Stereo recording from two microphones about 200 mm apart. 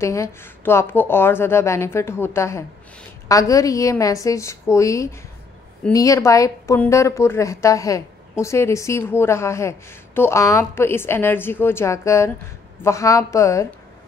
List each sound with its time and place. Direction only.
0.0 s speech: 15° left (ahead or behind)